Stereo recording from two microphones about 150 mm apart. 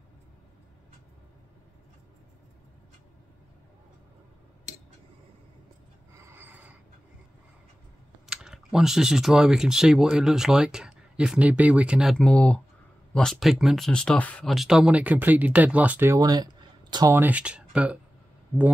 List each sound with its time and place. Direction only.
6.3 s a sound: 10° right (ahead or behind)
8.3 s speech: 5° right (ahead or behind); by 17.2 s 25° right (ahead or behind)
17.2 s speech: 10° right (ahead or behind)